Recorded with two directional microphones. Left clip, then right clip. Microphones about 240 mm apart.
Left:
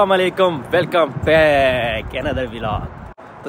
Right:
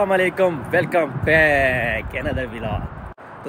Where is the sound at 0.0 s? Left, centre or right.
Centre.